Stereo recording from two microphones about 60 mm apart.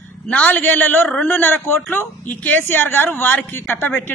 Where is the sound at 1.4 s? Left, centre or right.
Left.